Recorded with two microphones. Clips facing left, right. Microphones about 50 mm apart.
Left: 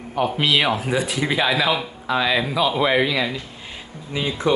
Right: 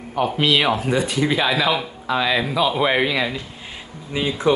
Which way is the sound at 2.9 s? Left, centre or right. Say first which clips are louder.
Even; right.